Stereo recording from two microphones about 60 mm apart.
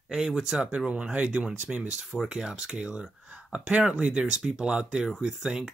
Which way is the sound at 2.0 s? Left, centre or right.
Centre.